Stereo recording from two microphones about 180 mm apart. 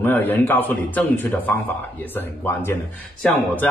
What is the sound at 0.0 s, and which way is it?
Speech, 10° left (ahead or behind).